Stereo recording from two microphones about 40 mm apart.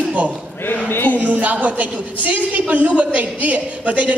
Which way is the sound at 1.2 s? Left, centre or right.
Right.